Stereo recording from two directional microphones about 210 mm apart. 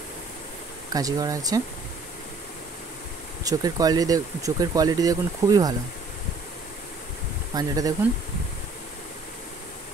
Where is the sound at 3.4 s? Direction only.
15° right (ahead or behind).